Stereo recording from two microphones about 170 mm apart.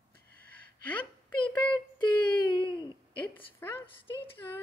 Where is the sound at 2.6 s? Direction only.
30° left (ahead or behind).